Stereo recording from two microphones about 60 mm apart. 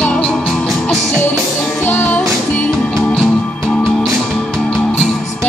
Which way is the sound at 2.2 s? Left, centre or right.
Centre.